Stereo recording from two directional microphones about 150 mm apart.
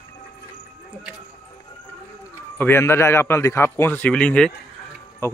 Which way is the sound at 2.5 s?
15° left (ahead or behind).